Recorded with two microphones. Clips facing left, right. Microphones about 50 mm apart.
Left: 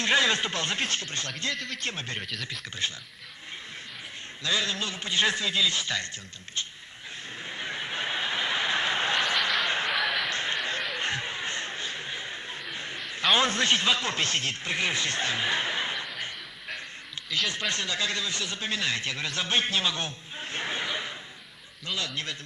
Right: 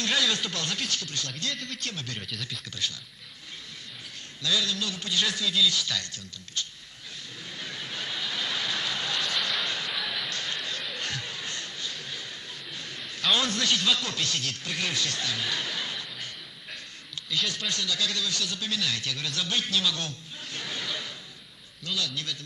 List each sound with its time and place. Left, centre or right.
0.0 s speech: left
1.5 s speech: centre
1.8 s speech: left
4.4 s speech: left
7.4 s vehicle: left
9.7 s a sound: left
9.9 s a sound: centre
10.3 s chatter: left
11.0 s a sound: left
13.1 s a man's voice: left